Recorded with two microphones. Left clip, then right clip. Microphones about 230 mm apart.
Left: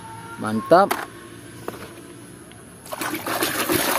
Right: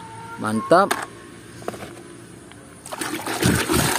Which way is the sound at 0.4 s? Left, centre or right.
Centre.